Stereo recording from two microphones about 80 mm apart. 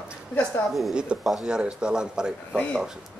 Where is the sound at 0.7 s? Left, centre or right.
Centre.